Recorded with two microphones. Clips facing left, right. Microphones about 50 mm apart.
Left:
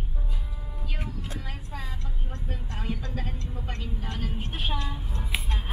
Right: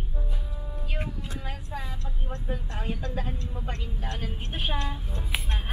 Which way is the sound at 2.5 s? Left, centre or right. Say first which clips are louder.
Right 1 dB; right.